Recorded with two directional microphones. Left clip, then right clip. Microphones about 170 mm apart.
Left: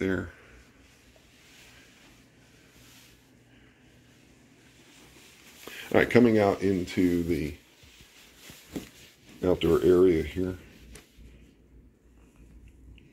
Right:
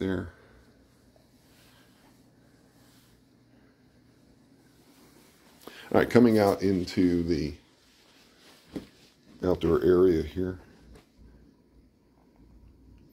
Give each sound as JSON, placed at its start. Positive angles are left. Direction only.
{"t": 0.0, "sound": "speech", "side_deg": 0}
{"t": 5.7, "sound": "speech", "side_deg": -10}
{"t": 9.4, "sound": "speech", "side_deg": 0}